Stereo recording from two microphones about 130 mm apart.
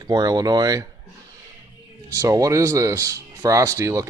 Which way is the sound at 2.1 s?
25° right (ahead or behind).